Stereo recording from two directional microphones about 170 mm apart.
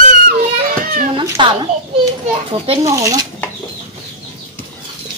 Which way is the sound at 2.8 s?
20° right (ahead or behind).